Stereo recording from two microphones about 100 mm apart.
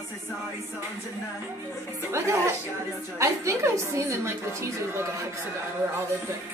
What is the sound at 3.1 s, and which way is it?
A woman's voice, 30° right (ahead or behind).